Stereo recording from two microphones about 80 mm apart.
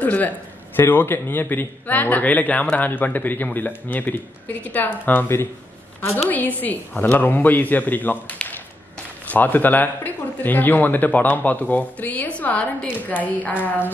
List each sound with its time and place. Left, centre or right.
0.0 s speech: centre